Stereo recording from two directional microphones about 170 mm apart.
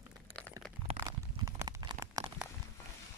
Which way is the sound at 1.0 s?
20° right (ahead or behind).